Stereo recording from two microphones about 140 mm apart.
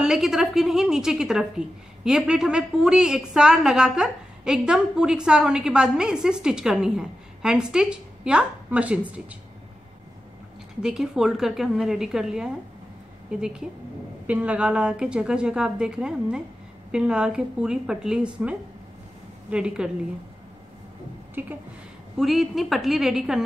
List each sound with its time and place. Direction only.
0.0 s a woman's voice: 5° right (ahead or behind)
10.8 s a woman's voice: 5° right (ahead or behind)
21.4 s a woman's voice: 15° right (ahead or behind)
22.2 s a woman's voice: centre (ahead or behind)